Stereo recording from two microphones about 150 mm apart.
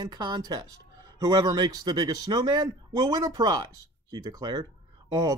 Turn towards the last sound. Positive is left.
turn(degrees=-30)  # may be behind; listen again after turning